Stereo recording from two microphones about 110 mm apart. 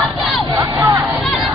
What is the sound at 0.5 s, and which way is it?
Crowd, 15° right (ahead or behind).